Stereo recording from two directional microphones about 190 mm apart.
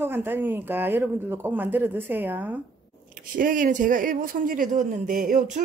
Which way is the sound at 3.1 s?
45° right (ahead or behind).